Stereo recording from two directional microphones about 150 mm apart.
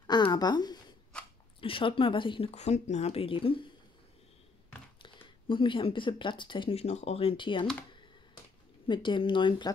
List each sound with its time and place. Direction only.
0.0 s a sound: 30° left (ahead or behind)
1.6 s speech: 35° left (ahead or behind)
2.5 s speech: 50° left (ahead or behind)
5.0 s speech: 35° left (ahead or behind)
8.8 s speech: 35° left (ahead or behind)